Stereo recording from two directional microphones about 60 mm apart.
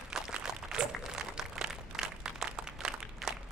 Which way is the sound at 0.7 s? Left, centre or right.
Centre.